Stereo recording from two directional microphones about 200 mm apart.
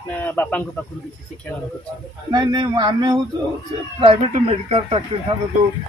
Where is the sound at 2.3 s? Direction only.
20° right (ahead or behind).